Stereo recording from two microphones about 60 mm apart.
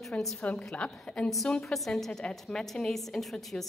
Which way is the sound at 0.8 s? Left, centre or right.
Centre.